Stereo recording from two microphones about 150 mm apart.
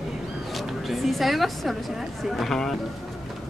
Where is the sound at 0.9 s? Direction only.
Centre (ahead or behind).